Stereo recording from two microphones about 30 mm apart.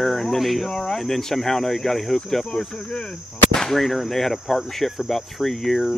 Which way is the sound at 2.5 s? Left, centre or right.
Left.